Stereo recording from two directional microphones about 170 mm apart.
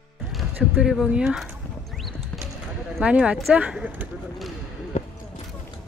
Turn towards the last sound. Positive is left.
turn(degrees=40)  # may be behind; listen again after turning